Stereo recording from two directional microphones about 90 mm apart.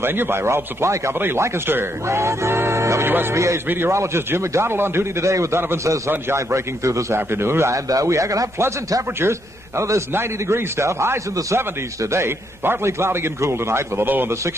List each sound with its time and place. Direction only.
0.0 s a man's voice: 25° right (ahead or behind)